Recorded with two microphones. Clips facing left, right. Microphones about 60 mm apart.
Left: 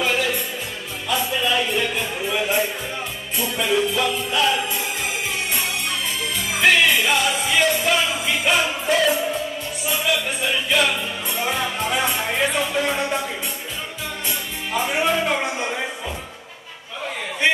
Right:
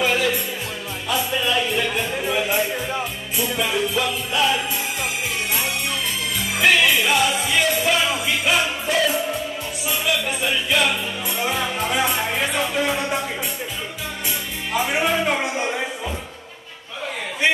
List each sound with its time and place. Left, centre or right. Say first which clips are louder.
0.0 s music: right 1 dB; centre
10.4 s music: even; centre
14.7 s music: even; centre